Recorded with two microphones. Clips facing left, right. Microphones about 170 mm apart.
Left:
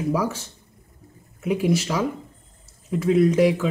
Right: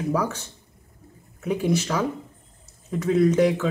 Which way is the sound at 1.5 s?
5° left (ahead or behind).